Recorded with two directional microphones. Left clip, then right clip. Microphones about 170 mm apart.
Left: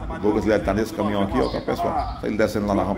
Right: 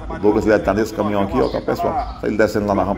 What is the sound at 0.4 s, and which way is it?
A man's voice, 5° right (ahead or behind).